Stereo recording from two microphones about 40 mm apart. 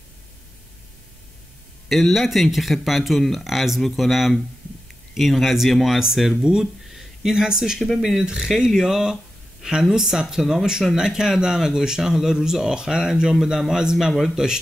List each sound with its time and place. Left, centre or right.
1.9 s speech: centre
6.6 s a sound: centre
7.4 s speech: centre